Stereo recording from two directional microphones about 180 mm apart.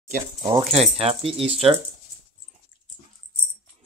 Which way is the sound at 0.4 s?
25° right (ahead or behind).